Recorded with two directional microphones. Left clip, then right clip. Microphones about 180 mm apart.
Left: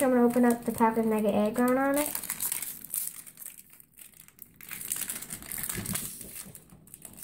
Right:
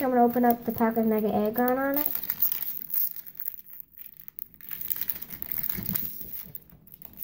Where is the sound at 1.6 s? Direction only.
25° right (ahead or behind).